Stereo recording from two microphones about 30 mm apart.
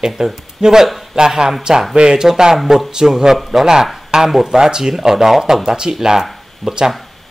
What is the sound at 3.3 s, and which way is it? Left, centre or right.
Speech, centre.